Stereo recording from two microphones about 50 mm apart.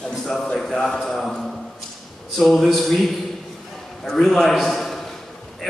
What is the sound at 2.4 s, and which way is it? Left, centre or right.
A man's voice, centre.